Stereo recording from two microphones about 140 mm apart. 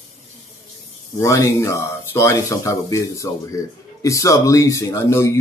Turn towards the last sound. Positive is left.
turn(degrees=20)  # may be behind; listen again after turning